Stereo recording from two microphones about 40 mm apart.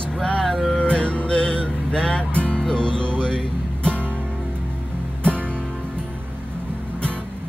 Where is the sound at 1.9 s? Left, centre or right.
Left.